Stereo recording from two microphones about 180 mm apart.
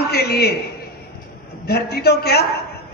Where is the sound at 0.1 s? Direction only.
60° left (ahead or behind).